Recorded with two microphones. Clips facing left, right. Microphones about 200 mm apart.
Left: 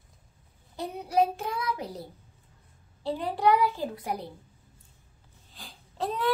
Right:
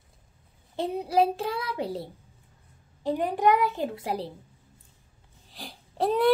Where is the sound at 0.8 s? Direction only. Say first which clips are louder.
Right 6 dB; 25° right (ahead or behind).